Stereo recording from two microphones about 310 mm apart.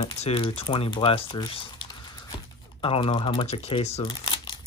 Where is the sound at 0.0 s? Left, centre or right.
Centre.